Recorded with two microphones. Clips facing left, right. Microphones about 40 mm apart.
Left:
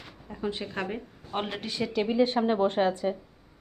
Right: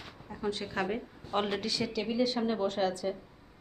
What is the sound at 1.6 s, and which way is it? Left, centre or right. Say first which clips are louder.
A woman's voice: left 4 dB; left.